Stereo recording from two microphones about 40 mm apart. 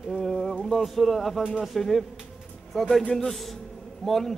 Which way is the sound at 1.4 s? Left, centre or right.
Right.